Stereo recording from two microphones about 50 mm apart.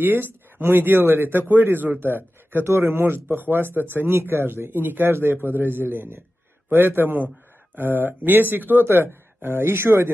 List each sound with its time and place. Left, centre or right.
0.0 s speech: right